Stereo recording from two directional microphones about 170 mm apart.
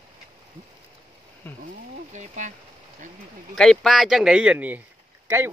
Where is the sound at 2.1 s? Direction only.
45° right (ahead or behind).